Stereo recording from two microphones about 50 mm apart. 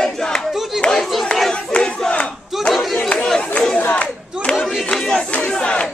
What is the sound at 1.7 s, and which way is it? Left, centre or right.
Battle cry, centre.